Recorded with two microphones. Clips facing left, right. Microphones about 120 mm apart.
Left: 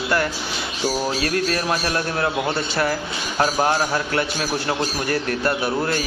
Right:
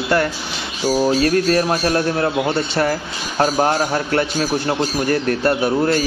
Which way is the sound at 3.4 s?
35° right (ahead or behind).